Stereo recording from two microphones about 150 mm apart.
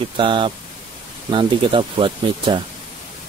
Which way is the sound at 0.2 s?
35° right (ahead or behind).